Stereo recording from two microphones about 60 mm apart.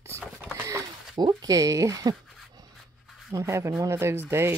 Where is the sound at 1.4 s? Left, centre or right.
Right.